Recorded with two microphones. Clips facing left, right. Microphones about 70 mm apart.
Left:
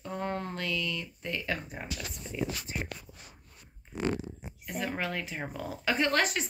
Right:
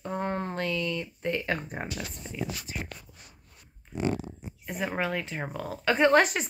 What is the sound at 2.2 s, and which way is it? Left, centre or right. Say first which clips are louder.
Speech: even; right.